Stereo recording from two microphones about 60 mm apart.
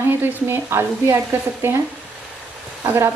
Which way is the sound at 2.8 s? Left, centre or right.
Right.